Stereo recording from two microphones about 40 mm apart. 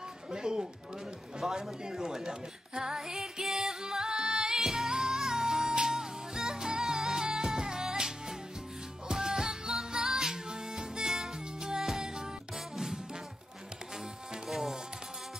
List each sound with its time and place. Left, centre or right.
0.3 s speech: centre
1.5 s music: centre
14.5 s music: centre